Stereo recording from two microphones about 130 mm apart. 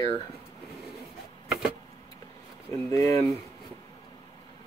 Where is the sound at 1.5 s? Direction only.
Centre (ahead or behind).